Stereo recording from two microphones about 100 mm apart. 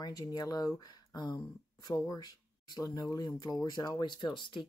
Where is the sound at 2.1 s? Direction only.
45° left (ahead or behind).